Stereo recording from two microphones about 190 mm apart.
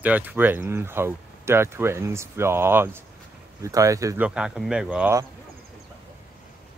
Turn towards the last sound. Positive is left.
turn(degrees=-10)  # may be behind; listen again after turning